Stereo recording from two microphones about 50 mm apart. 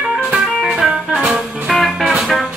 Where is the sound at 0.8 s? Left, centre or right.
Centre.